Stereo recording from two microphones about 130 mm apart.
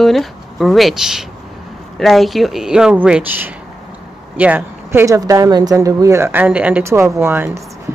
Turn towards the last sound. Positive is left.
turn(degrees=-20)  # may be behind; listen again after turning